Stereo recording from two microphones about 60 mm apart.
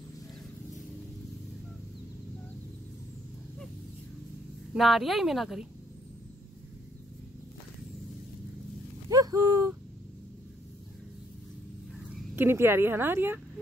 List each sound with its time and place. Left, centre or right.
4.7 s a woman's voice: centre
9.1 s a sound: right
12.4 s speech: right